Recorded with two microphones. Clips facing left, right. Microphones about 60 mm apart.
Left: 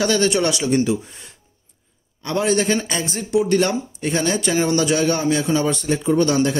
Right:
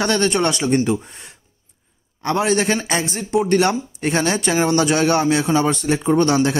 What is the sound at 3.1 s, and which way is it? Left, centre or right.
Speech, right.